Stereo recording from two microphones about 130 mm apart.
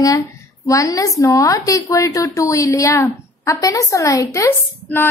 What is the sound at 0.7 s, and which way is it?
A woman's voice, 25° left (ahead or behind).